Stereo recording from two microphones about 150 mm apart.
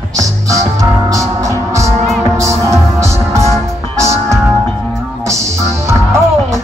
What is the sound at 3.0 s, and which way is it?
Music, 20° right (ahead or behind).